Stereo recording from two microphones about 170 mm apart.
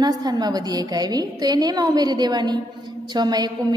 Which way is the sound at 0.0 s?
25° right (ahead or behind).